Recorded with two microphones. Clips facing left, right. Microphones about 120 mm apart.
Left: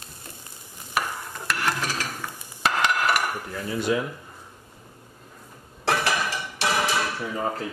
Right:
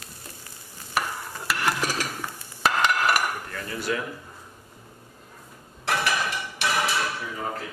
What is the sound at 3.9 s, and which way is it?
Speech, 20° left (ahead or behind).